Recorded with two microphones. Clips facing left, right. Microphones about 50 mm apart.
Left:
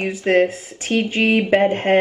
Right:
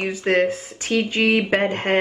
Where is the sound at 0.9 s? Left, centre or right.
Left.